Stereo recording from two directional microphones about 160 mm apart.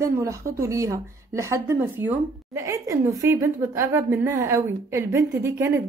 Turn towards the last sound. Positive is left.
turn(degrees=-20)  # may be behind; listen again after turning